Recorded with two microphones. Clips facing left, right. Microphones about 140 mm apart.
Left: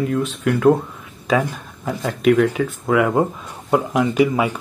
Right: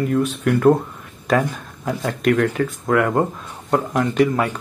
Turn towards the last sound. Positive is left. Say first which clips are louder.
# left 1 dB
turn(degrees=5)  # may be behind; listen again after turning